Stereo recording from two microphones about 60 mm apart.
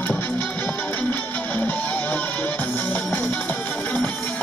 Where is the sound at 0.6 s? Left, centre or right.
Left.